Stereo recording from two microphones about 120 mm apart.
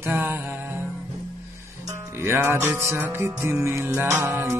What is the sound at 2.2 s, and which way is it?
Music, 20° right (ahead or behind).